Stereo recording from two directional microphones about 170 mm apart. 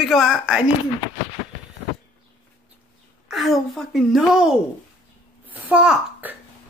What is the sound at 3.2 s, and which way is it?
A woman's voice, centre (ahead or behind).